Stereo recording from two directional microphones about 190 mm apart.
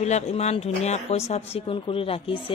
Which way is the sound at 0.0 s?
35° left (ahead or behind).